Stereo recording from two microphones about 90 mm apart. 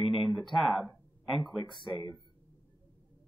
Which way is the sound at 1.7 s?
55° left (ahead or behind).